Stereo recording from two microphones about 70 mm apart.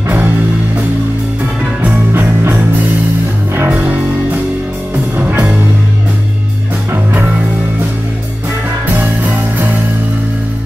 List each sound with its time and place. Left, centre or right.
2.1 s music: right
5.2 s music: right
6.9 s music: right
9.0 s music: right